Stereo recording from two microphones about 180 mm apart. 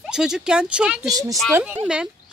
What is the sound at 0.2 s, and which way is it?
Speech, 5° right (ahead or behind).